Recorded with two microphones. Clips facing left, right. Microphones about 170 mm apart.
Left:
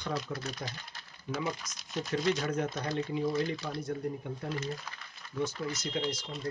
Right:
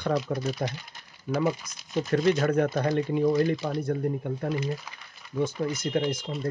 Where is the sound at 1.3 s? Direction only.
55° right (ahead or behind).